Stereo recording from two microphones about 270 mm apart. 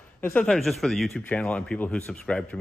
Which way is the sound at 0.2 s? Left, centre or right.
Centre.